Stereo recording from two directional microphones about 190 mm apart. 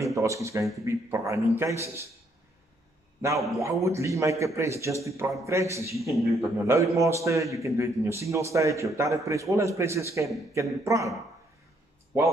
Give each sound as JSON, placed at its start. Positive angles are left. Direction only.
{"t": 0.0, "sound": "a man's voice", "side_deg": -15}
{"t": 3.3, "sound": "a man's voice", "side_deg": 0}
{"t": 3.6, "sound": "a man's voice", "side_deg": -15}
{"t": 5.9, "sound": "a man's voice", "side_deg": 0}
{"t": 6.7, "sound": "a man's voice", "side_deg": -15}